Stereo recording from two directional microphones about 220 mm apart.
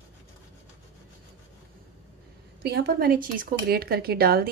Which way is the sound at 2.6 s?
45° right (ahead or behind).